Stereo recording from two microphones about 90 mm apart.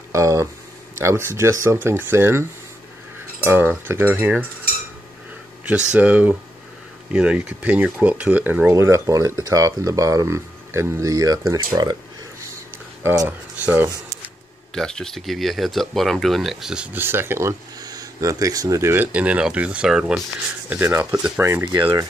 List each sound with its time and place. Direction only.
0.1 s speech: 35° right (ahead or behind)
1.8 s cutlery: 20° right (ahead or behind)
3.4 s cutlery: 25° right (ahead or behind)
5.7 s speech: 15° right (ahead or behind)
8.7 s speech: 30° right (ahead or behind); by 12.0 s 45° right (ahead or behind)
13.0 s cutlery: 25° right (ahead or behind)
13.6 s speech: 15° right (ahead or behind)
14.7 s speech: 5° left (ahead or behind)
16.9 s speech: 25° right (ahead or behind)
18.9 s speech: 15° right (ahead or behind)
20.7 s cutlery: 20° right (ahead or behind)
21.4 s speech: 40° right (ahead or behind)